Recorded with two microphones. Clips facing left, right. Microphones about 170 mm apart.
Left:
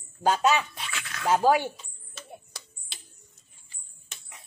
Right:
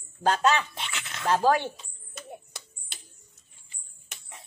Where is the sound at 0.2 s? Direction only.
5° left (ahead or behind).